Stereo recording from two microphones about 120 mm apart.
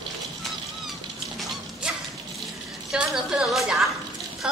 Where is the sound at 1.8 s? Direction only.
10° right (ahead or behind).